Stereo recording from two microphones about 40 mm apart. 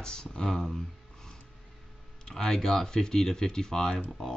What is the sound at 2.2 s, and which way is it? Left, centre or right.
Speech, centre.